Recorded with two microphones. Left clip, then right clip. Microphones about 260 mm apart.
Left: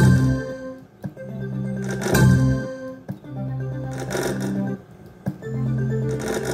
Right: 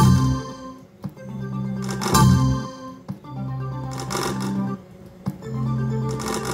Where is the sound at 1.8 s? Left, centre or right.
Right.